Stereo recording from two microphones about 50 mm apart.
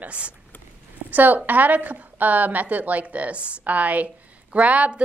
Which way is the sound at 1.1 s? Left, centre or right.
Right.